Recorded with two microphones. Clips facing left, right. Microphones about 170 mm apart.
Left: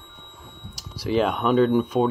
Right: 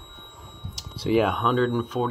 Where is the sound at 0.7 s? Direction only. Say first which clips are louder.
Right 2 dB; 25° right (ahead or behind).